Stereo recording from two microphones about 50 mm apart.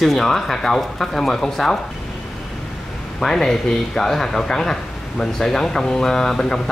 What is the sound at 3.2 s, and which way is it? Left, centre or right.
Speech, centre.